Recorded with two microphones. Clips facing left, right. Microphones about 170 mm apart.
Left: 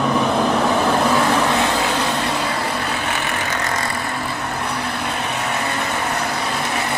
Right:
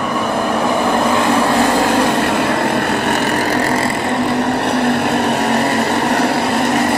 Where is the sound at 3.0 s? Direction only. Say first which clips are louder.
Right 8 dB; 40° right (ahead or behind).